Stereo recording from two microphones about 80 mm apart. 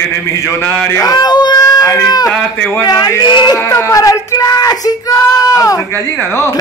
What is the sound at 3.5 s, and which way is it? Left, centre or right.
Speech, left.